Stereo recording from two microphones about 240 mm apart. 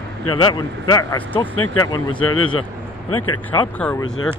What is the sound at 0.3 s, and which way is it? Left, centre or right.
Speech, centre.